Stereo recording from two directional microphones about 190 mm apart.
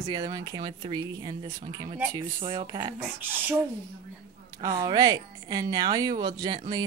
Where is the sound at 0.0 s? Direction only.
25° right (ahead or behind).